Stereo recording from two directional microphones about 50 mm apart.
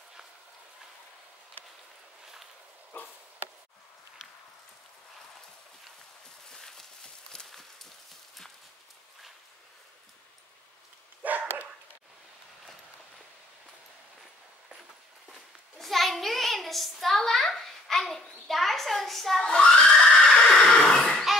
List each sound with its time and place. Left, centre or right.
6.5 s horse: centre
11.2 s dog: right
15.8 s a sound: centre
19.4 s neigh: centre